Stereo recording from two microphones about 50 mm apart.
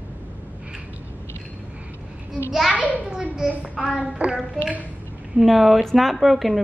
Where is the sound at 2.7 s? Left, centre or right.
Left.